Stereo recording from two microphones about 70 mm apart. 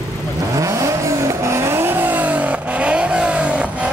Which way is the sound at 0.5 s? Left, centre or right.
Right.